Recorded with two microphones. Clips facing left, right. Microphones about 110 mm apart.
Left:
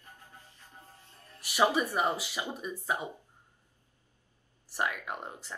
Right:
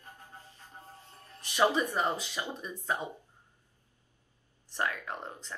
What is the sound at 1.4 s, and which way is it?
Speech, 15° left (ahead or behind).